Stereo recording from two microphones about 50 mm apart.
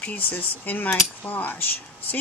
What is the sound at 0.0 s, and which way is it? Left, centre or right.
A woman's voice, left.